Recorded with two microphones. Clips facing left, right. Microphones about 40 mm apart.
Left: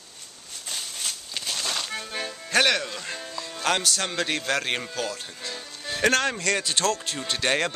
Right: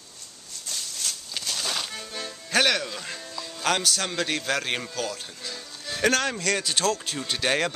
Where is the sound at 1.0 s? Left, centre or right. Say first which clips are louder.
Right 1 dB; centre.